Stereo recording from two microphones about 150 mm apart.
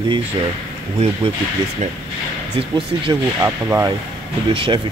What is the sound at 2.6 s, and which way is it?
Speech, 35° right (ahead or behind).